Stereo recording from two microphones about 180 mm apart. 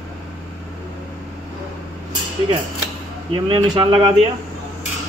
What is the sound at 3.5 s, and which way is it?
Speech, 25° right (ahead or behind).